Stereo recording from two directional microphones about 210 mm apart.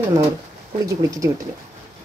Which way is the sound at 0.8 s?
15° right (ahead or behind).